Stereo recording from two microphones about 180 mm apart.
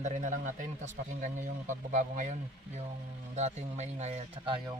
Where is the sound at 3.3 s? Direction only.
40° right (ahead or behind).